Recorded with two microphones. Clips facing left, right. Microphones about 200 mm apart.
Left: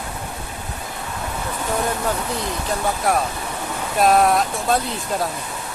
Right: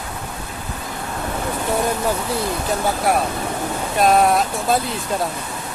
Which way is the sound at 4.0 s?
Centre (ahead or behind).